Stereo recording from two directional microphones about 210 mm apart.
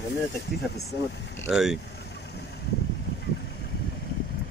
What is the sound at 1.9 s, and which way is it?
Vehicle, 50° left (ahead or behind).